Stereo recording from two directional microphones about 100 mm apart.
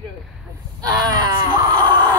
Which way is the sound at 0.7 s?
45° right (ahead or behind).